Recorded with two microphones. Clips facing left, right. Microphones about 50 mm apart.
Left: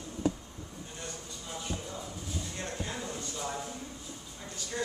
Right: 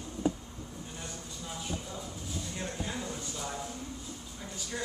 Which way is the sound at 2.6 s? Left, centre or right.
Centre.